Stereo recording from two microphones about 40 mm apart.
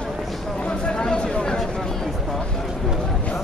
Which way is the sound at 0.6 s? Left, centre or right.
Left.